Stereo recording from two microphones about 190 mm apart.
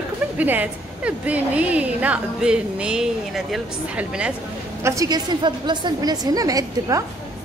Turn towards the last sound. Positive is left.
turn(degrees=-20)  # may be behind; listen again after turning